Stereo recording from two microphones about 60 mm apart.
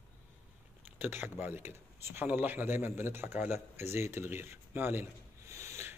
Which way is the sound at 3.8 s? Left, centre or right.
Right.